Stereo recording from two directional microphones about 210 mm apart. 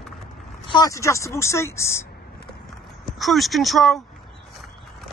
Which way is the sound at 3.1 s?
Centre (ahead or behind).